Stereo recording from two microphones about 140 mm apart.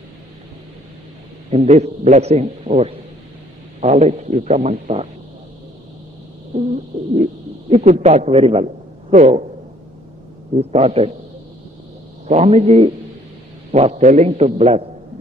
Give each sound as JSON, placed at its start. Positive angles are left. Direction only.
{"t": 1.5, "sound": "a man's voice", "side_deg": -50}
{"t": 3.8, "sound": "a man's voice", "side_deg": -60}
{"t": 6.9, "sound": "a man's voice", "side_deg": -45}
{"t": 9.1, "sound": "a man's voice", "side_deg": -55}
{"t": 10.6, "sound": "a man's voice", "side_deg": -45}
{"t": 12.3, "sound": "a man's voice", "side_deg": -50}